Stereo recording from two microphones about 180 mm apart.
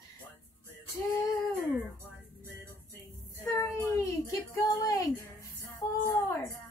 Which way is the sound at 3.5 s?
15° left (ahead or behind).